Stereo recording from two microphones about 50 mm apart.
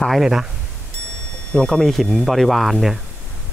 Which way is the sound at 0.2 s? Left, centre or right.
Centre.